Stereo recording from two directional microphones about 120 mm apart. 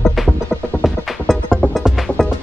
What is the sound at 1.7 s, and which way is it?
Music, 5° right (ahead or behind).